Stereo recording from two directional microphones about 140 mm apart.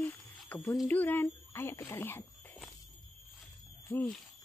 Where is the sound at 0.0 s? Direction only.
15° left (ahead or behind).